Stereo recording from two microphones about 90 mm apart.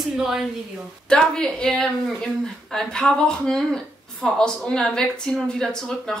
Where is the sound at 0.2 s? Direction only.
5° right (ahead or behind).